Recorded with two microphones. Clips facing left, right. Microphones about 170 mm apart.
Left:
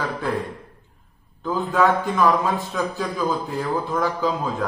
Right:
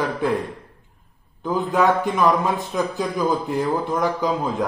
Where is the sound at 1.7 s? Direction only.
15° right (ahead or behind).